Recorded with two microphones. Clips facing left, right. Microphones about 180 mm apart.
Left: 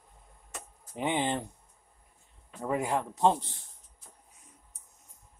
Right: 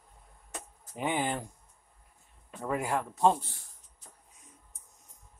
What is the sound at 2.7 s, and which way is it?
Speech, 20° left (ahead or behind).